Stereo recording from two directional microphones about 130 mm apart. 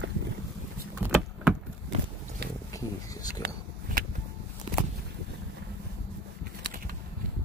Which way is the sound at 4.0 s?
90° right.